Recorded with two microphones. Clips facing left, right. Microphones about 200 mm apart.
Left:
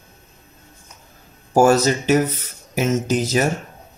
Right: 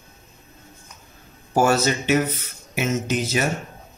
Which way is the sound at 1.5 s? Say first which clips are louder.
Left 5 dB; 45° left (ahead or behind).